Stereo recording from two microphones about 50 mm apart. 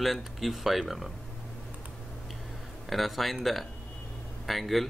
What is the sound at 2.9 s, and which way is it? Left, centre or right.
Speech, centre.